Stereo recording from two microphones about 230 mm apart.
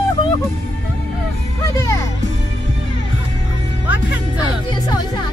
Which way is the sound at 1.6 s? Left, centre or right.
Centre.